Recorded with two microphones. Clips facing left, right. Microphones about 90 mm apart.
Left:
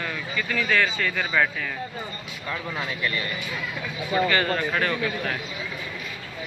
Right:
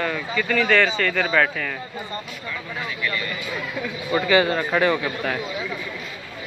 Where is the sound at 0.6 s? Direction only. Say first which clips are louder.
Right 4 dB; 90° right.